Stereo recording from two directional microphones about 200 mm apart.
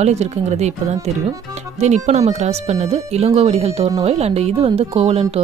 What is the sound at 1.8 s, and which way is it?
Speech, 35° right (ahead or behind).